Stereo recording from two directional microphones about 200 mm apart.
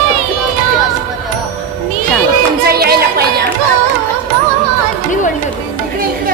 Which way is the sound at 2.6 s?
50° right (ahead or behind).